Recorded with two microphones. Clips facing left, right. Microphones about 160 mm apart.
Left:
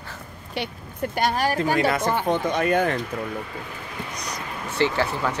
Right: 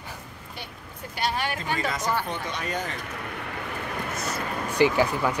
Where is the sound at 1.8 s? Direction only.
60° left (ahead or behind).